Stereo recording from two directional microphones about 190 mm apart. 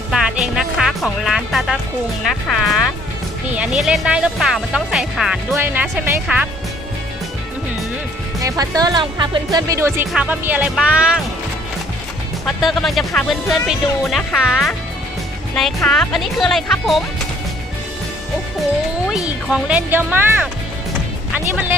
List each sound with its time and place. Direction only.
0.1 s music: centre (ahead or behind)
2.4 s speech: centre (ahead or behind)
8.4 s speech: 20° right (ahead or behind)
12.4 s speech: centre (ahead or behind)
19.1 s speech: 5° right (ahead or behind)